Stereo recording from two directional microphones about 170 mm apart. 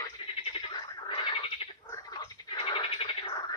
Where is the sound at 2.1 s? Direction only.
30° left (ahead or behind).